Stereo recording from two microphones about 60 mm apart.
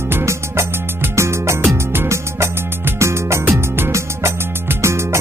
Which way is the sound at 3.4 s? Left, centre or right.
Right.